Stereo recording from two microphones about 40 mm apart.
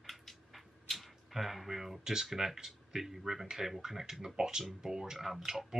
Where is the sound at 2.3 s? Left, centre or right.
Centre.